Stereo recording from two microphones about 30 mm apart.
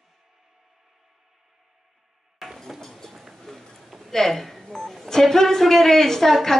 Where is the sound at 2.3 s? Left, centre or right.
Centre.